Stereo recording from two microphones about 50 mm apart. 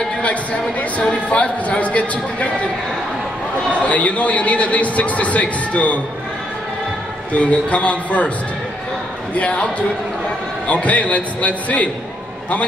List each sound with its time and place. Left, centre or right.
0.2 s a man's voice: left
3.8 s a man's voice: left
7.3 s a man's voice: left
9.3 s a man's voice: left